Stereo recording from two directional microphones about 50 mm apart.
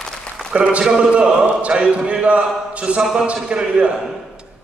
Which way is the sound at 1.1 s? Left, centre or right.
Right.